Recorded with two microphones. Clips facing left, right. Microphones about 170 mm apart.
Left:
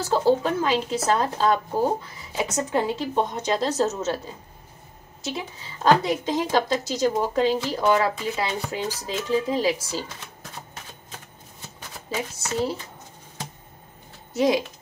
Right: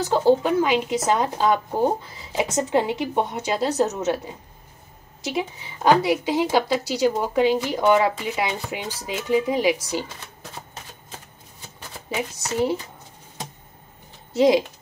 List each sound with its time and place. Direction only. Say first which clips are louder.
0.0 s a woman's voice: right 2 dB; 15° right (ahead or behind)
5.3 s a woman's voice: right 7 dB; 15° right (ahead or behind)
12.1 s a woman's voice: right 2 dB; 15° right (ahead or behind)
14.3 s speech: right 4 dB; 25° right (ahead or behind)